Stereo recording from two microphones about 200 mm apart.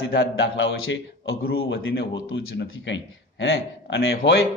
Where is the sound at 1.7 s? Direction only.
55° left (ahead or behind).